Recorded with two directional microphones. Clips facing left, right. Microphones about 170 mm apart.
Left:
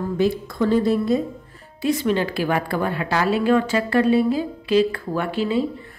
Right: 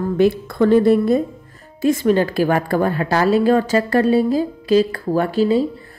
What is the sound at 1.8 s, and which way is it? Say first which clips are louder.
A woman's voice: right 5 dB; 45° right (ahead or behind).